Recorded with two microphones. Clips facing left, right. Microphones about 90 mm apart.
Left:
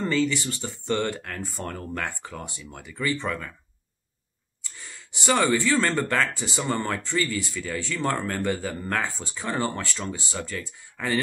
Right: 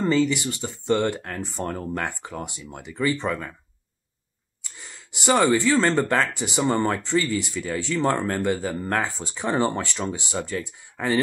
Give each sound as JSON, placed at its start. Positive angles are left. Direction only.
{"t": 0.2, "sound": "speech", "side_deg": -10}
{"t": 5.2, "sound": "speech", "side_deg": -15}
{"t": 8.3, "sound": "speech", "side_deg": -5}
{"t": 9.3, "sound": "speech", "side_deg": -20}